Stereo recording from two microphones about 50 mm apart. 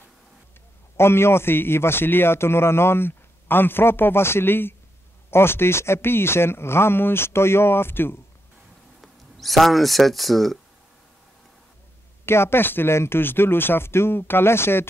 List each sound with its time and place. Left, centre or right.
0.9 s a man's voice: left
9.0 s speech: centre
12.3 s a man's voice: left